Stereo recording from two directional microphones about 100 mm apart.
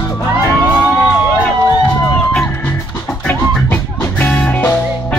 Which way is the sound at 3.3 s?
20° left (ahead or behind).